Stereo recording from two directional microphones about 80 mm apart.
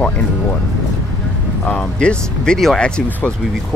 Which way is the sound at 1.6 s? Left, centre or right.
Centre.